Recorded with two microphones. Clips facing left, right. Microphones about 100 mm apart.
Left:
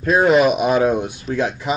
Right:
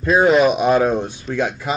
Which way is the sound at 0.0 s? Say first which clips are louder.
Even; centre (ahead or behind).